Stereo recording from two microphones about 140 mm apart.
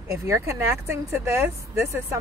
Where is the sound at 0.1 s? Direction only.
20° right (ahead or behind).